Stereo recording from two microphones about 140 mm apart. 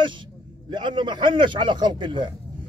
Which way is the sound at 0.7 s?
35° right (ahead or behind).